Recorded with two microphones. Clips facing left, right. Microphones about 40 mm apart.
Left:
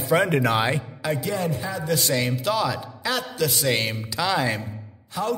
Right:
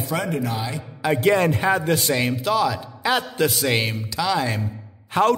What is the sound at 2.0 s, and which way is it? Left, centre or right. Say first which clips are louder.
Speech: right 2 dB; centre.